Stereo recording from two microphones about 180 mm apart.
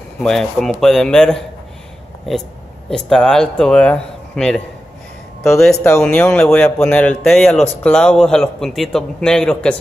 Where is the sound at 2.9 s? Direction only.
5° left (ahead or behind).